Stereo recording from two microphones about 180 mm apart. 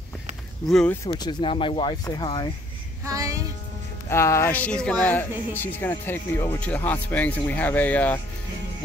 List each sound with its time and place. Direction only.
0.7 s speech: centre (ahead or behind)
1.0 s speech: 25° left (ahead or behind)
3.1 s music: 20° right (ahead or behind)
4.1 s speech: 15° left (ahead or behind)